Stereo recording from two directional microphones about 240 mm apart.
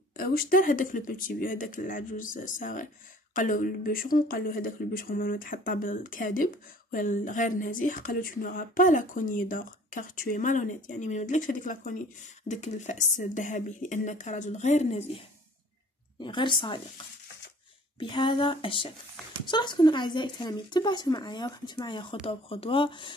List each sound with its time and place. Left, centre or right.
0.2 s speech: left; by 16.8 s centre
17.9 s speech: centre